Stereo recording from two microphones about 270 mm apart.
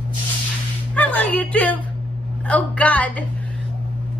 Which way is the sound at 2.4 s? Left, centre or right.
Centre.